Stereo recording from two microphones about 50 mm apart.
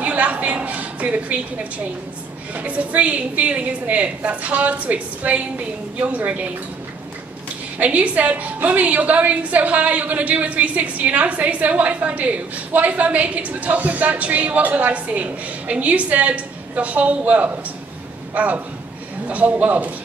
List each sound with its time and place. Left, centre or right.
0.0 s a woman's voice: right
7.8 s a woman's voice: right